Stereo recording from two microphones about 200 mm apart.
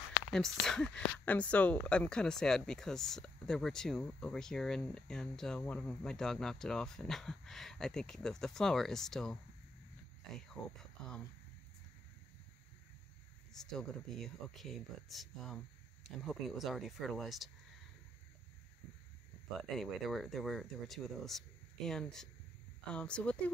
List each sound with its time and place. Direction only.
0.3 s speech: centre (ahead or behind)
10.6 s speech: 20° left (ahead or behind)
13.5 s speech: 5° left (ahead or behind)
19.7 s speech: centre (ahead or behind)